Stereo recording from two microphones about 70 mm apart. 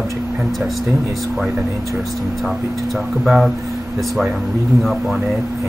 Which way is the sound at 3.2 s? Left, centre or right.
Centre.